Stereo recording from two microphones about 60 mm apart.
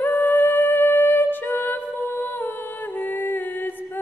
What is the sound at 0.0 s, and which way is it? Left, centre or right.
Music, left.